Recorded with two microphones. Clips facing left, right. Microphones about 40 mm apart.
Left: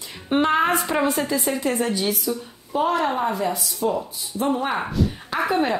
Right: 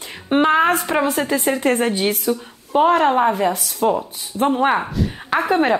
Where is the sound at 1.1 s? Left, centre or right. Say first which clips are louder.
Right 4 dB; right.